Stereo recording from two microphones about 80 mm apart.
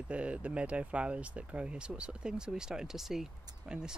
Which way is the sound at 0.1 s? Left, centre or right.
Centre.